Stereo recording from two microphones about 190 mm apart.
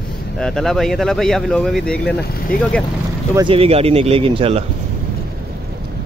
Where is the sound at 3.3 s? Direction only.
25° right (ahead or behind).